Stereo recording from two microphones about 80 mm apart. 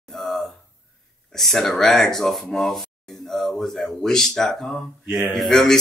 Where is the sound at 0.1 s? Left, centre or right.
Centre.